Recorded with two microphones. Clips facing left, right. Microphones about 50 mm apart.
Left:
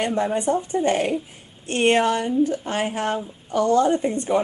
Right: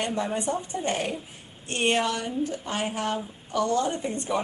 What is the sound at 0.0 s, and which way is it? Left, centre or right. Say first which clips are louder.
Speech: left 6 dB; left.